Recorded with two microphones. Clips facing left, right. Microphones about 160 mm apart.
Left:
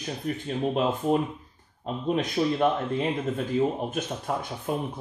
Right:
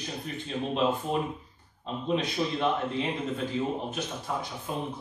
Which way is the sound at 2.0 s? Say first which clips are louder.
Left 4 dB; 50° left (ahead or behind).